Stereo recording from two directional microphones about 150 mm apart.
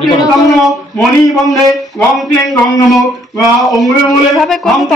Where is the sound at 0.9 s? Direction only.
25° left (ahead or behind).